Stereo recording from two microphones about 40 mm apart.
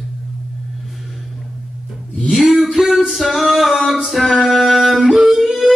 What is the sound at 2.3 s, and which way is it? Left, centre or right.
Music, centre.